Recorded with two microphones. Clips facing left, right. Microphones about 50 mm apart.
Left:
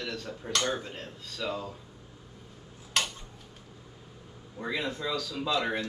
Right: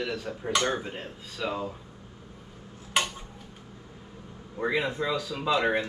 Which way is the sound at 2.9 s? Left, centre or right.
Centre.